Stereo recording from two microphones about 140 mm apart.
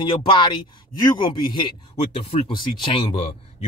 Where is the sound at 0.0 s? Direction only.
35° left (ahead or behind).